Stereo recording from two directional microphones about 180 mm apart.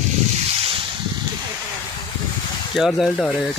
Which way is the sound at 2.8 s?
Centre (ahead or behind).